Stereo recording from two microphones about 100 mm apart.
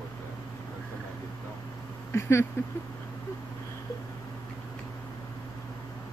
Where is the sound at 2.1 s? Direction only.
25° left (ahead or behind).